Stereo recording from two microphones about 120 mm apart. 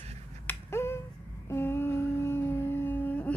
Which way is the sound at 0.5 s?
20° left (ahead or behind).